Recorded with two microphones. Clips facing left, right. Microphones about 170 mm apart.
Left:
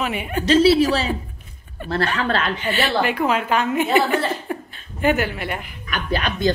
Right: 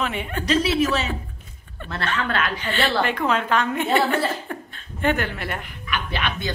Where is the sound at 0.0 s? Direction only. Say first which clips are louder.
Left 3 dB; 10° left (ahead or behind).